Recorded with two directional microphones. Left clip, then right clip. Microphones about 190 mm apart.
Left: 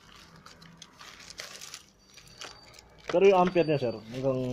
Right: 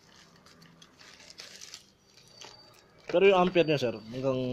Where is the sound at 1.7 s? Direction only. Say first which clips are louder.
Left 2 dB; centre (ahead or behind).